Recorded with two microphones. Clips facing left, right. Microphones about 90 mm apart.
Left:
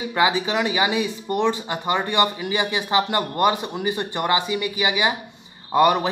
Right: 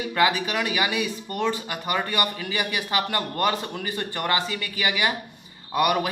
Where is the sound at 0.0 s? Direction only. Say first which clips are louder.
Left 2 dB; 20° left (ahead or behind).